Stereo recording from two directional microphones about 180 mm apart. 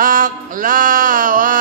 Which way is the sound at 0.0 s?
50° right (ahead or behind).